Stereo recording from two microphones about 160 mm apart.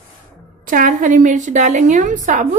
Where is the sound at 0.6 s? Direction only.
55° right (ahead or behind).